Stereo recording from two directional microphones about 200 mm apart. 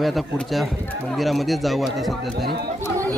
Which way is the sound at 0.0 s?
Centre (ahead or behind).